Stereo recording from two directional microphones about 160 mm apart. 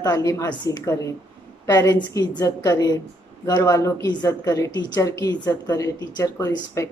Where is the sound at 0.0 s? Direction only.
25° left (ahead or behind).